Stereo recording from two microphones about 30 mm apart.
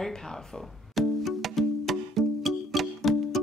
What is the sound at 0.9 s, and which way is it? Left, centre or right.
Music, centre.